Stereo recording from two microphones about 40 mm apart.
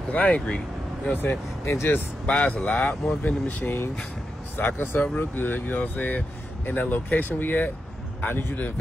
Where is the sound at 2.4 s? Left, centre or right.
Left.